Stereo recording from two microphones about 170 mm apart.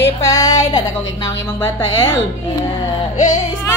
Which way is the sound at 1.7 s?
25° left (ahead or behind).